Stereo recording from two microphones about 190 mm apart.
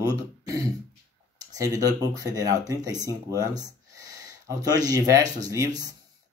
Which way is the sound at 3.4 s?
20° right (ahead or behind).